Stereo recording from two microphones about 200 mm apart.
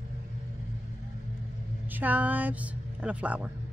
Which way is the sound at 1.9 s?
10° right (ahead or behind).